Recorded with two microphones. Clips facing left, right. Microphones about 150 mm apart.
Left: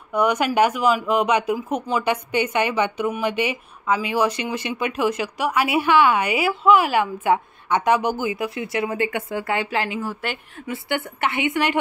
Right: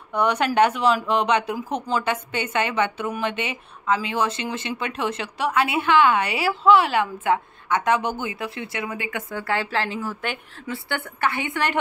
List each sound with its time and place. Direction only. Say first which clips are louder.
0.1 s speech: left 2 dB; 10° left (ahead or behind)
9.1 s speech: left 2 dB; 20° left (ahead or behind)
10.7 s a woman's voice: left 3 dB; 20° left (ahead or behind)